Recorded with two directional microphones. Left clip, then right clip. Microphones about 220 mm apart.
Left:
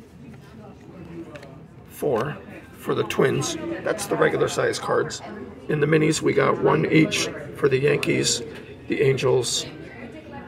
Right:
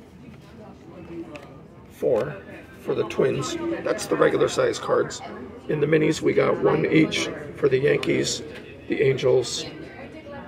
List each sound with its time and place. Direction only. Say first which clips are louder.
2.8 s speech: left 1 dB; 35° left (ahead or behind)
3.8 s a man's voice: even; 10° left (ahead or behind)